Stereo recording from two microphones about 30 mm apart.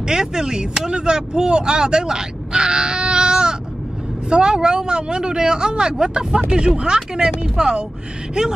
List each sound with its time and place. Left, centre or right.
0.0 s speech: right